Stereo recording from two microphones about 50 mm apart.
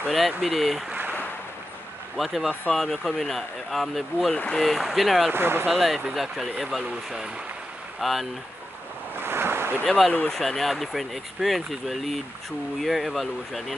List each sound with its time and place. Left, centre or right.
0.1 s speech: centre
2.1 s speech: centre
5.3 s speech: right
5.7 s speech: centre
9.1 s waves: right
9.8 s speech: centre